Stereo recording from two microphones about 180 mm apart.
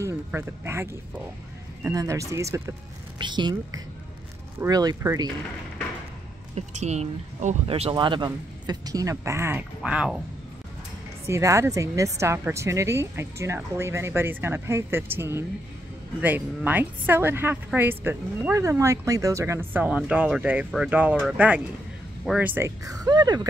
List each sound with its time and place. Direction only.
0.0 s a woman's voice: 15° right (ahead or behind)
6.5 s speech: 40° right (ahead or behind); by 10.2 s 5° right (ahead or behind)
11.2 s a woman's voice: 15° right (ahead or behind)